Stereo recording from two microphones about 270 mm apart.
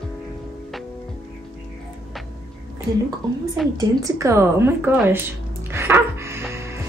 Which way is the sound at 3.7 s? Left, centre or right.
Centre.